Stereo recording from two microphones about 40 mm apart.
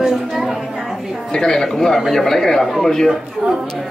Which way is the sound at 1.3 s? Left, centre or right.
Centre.